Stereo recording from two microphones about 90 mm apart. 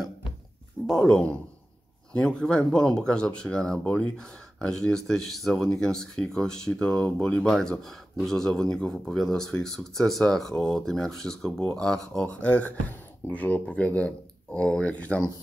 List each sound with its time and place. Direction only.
0.8 s speech: 5° left (ahead or behind)